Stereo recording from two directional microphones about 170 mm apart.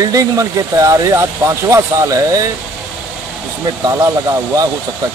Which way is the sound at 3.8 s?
20° right (ahead or behind).